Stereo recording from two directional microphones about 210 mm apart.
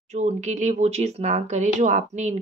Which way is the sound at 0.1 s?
35° right (ahead or behind).